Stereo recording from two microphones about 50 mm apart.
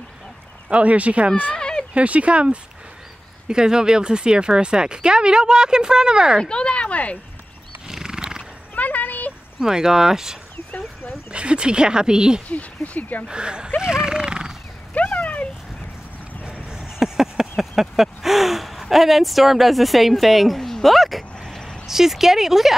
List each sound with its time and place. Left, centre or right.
0.7 s speech: right
1.6 s a sound: centre
2.0 s speech: right
6.4 s speech: centre
7.9 s wild animals: centre
8.7 s a sound: left
9.6 s speech: centre
11.3 s speech: centre
12.4 s speech: left
13.3 s speech: centre
13.7 s dog: centre
15.0 s a sound: left
16.6 s a sound: centre
21.8 s speech: centre